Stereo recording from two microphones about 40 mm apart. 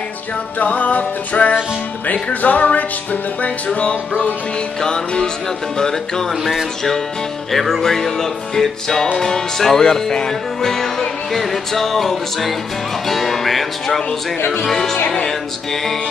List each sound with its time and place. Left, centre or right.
0.6 s music: left
4.8 s music: centre
5.8 s speech: centre
7.5 s speech: centre
13.1 s music: centre
14.6 s speech: centre